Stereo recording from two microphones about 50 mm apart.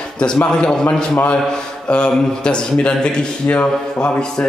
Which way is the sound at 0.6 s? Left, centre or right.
Centre.